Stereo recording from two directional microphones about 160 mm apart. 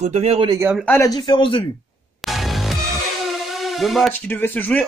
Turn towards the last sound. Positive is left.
turn(degrees=10)  # may be behind; listen again after turning